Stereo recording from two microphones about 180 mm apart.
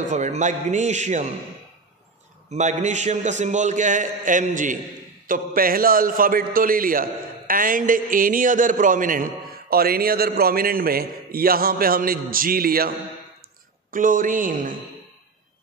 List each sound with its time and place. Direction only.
0.1 s a man's voice: 40° right (ahead or behind)
2.5 s a man's voice: 40° right (ahead or behind); by 12.9 s 55° right (ahead or behind)
13.9 s a man's voice: 50° right (ahead or behind)